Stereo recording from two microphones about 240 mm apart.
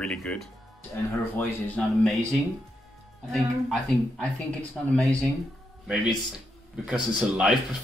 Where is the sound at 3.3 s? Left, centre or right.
Centre.